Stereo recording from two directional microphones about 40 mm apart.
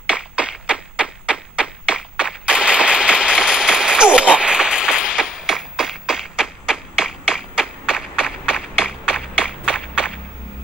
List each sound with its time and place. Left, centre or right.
0.1 s tap: right
6.6 s clapping: centre